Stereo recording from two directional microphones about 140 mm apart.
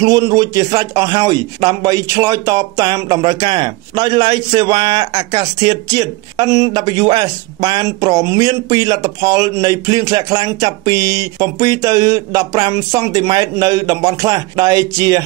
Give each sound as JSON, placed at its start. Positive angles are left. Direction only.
{"t": 0.0, "sound": "a man's voice", "side_deg": -25}